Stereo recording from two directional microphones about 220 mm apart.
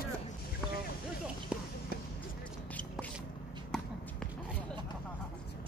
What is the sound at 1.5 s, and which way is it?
Clip-clop, 5° right (ahead or behind).